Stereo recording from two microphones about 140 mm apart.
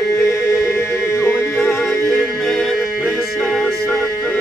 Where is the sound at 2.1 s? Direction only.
5° left (ahead or behind).